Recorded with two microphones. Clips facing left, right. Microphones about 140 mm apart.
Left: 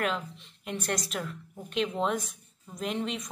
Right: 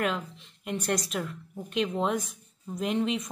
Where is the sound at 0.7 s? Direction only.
10° right (ahead or behind).